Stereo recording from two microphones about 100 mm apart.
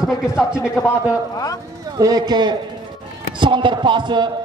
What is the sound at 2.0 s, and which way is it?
A man's voice, 40° right (ahead or behind).